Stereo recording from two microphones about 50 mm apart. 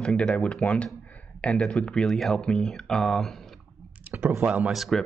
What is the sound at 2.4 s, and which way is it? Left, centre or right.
Speech, centre.